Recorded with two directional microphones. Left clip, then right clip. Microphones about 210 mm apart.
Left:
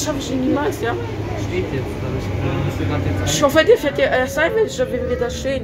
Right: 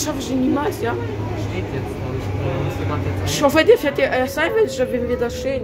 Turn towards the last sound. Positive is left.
turn(degrees=-10)  # may be behind; listen again after turning